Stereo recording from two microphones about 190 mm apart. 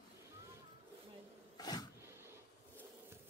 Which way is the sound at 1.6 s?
20° left (ahead or behind).